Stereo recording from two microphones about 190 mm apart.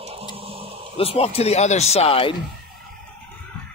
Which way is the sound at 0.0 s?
30° right (ahead or behind).